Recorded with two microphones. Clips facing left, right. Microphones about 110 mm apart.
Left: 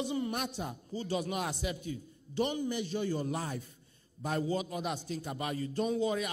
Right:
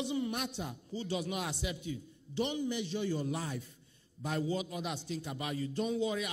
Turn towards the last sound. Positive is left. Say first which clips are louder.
# left 2 dB
turn(degrees=45)  # may be behind; listen again after turning